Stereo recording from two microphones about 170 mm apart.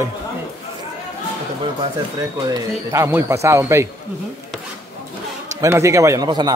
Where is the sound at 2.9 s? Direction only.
15° right (ahead or behind).